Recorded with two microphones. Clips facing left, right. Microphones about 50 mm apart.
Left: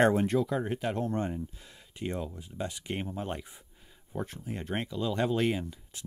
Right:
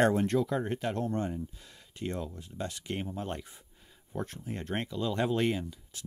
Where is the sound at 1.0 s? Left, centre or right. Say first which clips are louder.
Left 1 dB; left.